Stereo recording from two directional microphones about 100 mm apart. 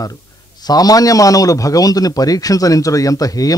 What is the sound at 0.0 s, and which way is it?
Speech, 40° left (ahead or behind).